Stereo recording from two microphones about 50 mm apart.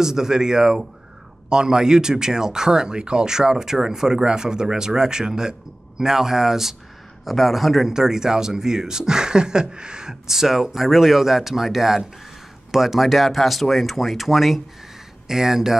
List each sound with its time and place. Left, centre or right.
0.0 s speech: centre